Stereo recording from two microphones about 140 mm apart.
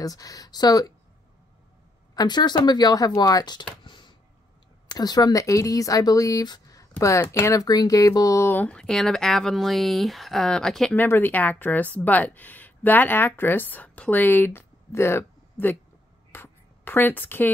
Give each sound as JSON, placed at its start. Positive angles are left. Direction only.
{"t": 0.0, "sound": "speech", "side_deg": 25}
{"t": 2.1, "sound": "speech", "side_deg": 30}
{"t": 3.8, "sound": "computer keyboard", "side_deg": 35}
{"t": 4.8, "sound": "speech", "side_deg": 30}
{"t": 11.0, "sound": "a woman's voice", "side_deg": 15}
{"t": 16.3, "sound": "writing", "side_deg": 15}